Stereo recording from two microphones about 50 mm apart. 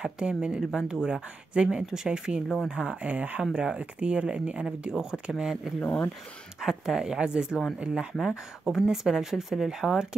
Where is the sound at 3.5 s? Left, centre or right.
Centre.